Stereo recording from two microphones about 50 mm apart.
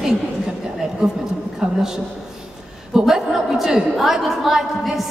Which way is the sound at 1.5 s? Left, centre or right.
Centre.